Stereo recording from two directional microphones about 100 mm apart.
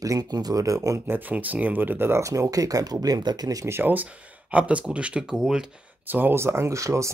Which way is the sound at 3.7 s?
15° right (ahead or behind).